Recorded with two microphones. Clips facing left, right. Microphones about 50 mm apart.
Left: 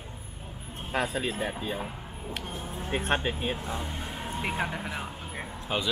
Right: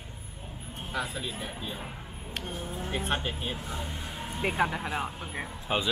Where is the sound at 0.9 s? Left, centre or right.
Left.